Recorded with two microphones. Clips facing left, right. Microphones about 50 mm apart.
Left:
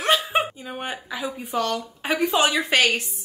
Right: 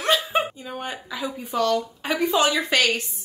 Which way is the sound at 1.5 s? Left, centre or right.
Left.